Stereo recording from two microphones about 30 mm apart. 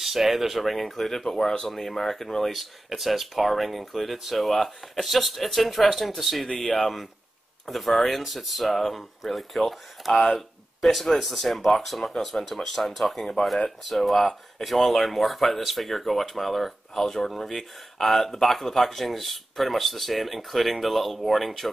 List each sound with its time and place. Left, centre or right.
0.0 s speech: centre
1.7 s speech: centre
2.5 s speech: centre
6.6 s speech: centre
16.9 s speech: centre